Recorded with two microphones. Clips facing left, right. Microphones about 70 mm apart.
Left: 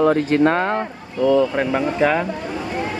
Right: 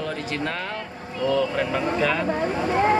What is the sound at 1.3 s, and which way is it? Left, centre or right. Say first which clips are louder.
Speech: left 4 dB; left.